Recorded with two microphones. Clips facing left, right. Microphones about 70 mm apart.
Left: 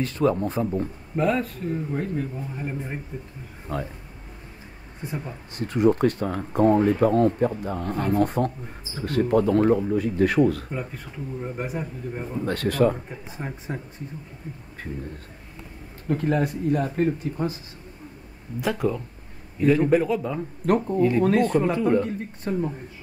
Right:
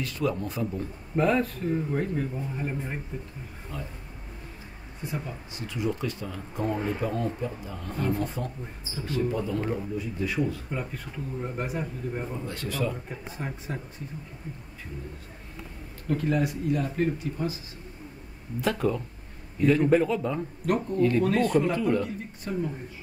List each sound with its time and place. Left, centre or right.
0.0 s speech: left
1.1 s speech: centre
3.7 s speech: left
5.5 s speech: left
11.4 s speech: centre
12.4 s speech: left
13.1 s speech: centre
16.1 s speech: left
18.6 s speech: centre
20.6 s speech: left
21.5 s speech: left
22.5 s speech: left